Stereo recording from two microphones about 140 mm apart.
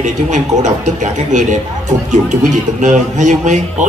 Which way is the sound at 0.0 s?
60° right (ahead or behind).